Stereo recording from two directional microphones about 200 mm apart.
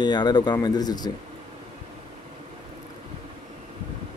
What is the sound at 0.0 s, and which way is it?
Speech, 20° left (ahead or behind).